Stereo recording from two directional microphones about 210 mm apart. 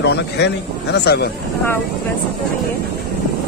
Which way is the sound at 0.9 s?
50° left (ahead or behind).